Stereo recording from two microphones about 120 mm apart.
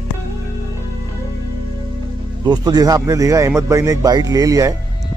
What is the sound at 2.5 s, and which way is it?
Speech, 35° right (ahead or behind).